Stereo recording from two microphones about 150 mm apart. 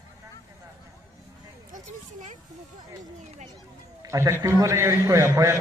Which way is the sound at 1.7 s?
55° right (ahead or behind).